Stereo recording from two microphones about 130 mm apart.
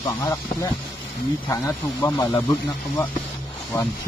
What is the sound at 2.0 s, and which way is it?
Speech, 15° left (ahead or behind).